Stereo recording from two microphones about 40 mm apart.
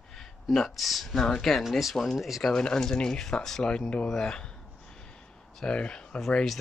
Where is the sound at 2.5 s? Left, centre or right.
Centre.